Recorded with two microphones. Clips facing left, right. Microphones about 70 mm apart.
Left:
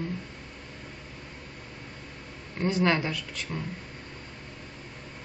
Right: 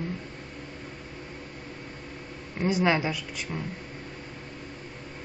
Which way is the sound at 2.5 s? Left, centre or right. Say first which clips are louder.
Right 1 dB; centre.